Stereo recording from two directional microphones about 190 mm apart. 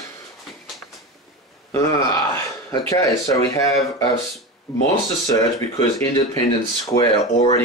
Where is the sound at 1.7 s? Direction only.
15° left (ahead or behind).